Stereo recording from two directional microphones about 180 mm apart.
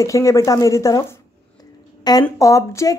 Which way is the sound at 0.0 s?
15° left (ahead or behind).